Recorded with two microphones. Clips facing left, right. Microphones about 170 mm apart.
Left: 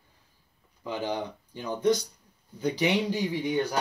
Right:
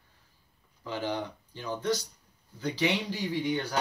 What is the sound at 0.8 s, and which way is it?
Speech, 15° left (ahead or behind).